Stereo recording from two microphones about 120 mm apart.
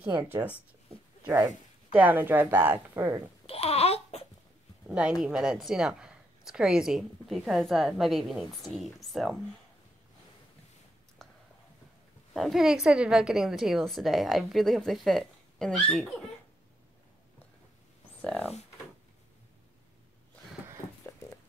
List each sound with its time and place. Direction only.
0.2 s speech: 15° right (ahead or behind)
1.2 s speech: 25° right (ahead or behind)
1.9 s speech: 15° right (ahead or behind)
3.4 s babbling: 55° left (ahead or behind)
4.8 s a woman's voice: 10° right (ahead or behind)
11.2 s a sound: 5° left (ahead or behind)
12.4 s a woman's voice: centre (ahead or behind)
18.2 s a sound: 10° left (ahead or behind)